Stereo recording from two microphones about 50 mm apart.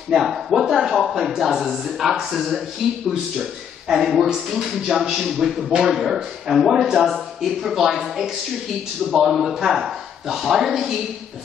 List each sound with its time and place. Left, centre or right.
0.1 s speech: centre
5.8 s speech: centre